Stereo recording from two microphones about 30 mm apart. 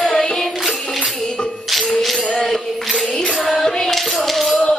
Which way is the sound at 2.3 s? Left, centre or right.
Centre.